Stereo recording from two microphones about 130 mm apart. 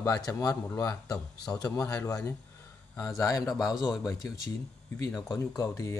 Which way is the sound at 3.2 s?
25° left (ahead or behind).